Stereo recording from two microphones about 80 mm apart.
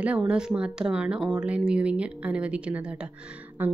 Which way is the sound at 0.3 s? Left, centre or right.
Centre.